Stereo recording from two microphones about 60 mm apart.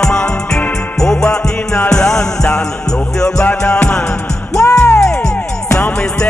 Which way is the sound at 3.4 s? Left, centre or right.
Left.